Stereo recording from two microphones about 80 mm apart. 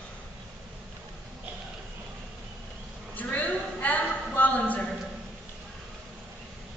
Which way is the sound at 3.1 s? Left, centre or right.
Centre.